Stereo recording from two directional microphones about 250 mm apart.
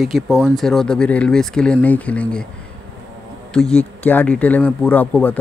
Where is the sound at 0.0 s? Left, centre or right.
Centre.